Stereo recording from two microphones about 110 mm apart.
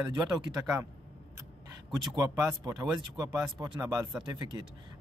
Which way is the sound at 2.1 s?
35° right (ahead or behind).